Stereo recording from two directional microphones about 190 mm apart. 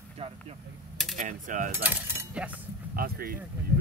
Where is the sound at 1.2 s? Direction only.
45° right (ahead or behind).